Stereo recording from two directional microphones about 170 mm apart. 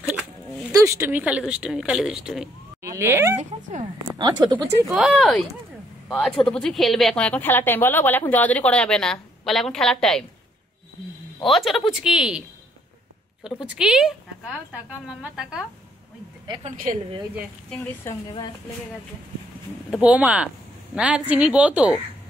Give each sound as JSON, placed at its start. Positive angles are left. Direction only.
{"t": 0.1, "sound": "a sound", "side_deg": -5}
{"t": 0.7, "sound": "a woman's voice", "side_deg": -15}
{"t": 2.8, "sound": "speech", "side_deg": -15}
{"t": 3.6, "sound": "a woman's voice", "side_deg": -45}
{"t": 4.2, "sound": "speech", "side_deg": -25}
{"t": 4.9, "sound": "a woman's voice", "side_deg": 0}
{"t": 11.4, "sound": "a woman's voice", "side_deg": 0}
{"t": 13.7, "sound": "a woman's voice", "side_deg": -5}
{"t": 16.6, "sound": "a woman's voice", "side_deg": -55}
{"t": 19.9, "sound": "a woman's voice", "side_deg": -5}